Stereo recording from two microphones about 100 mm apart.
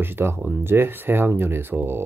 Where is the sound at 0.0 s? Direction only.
25° right (ahead or behind).